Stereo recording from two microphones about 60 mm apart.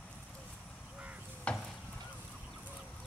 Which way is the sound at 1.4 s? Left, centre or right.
Centre.